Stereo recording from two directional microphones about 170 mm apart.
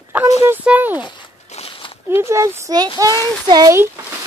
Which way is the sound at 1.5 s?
35° left (ahead or behind).